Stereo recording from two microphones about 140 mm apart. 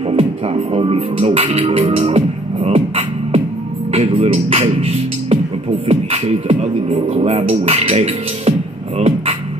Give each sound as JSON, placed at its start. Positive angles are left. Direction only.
{"t": 0.1, "sound": "speech", "side_deg": -45}
{"t": 3.9, "sound": "speech", "side_deg": -45}